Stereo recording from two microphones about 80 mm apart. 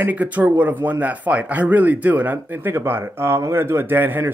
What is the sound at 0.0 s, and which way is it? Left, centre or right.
A man's voice, centre.